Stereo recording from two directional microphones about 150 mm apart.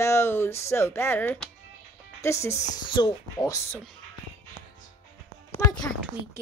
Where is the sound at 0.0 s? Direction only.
15° left (ahead or behind).